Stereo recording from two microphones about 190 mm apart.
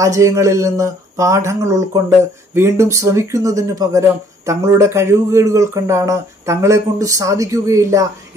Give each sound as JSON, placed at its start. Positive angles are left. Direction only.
{"t": 0.0, "sound": "speech", "side_deg": -15}